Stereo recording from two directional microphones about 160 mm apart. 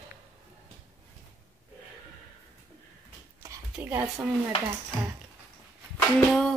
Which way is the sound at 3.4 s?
15° right (ahead or behind).